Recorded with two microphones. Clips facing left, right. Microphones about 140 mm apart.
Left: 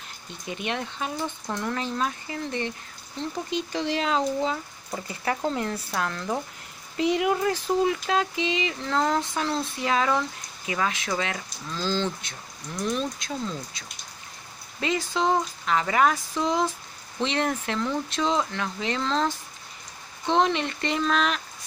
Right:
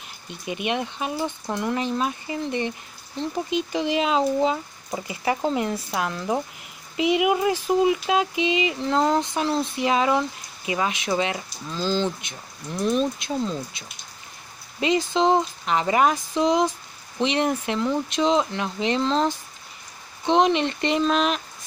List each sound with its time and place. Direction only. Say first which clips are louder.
0.5 s speech: right 4 dB; 15° right (ahead or behind)